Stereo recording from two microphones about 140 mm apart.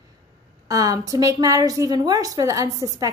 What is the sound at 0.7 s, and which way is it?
A woman's voice, 25° right (ahead or behind).